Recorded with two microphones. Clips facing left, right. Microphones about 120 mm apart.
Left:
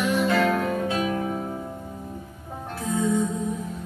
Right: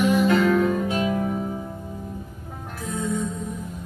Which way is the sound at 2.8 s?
25° left (ahead or behind).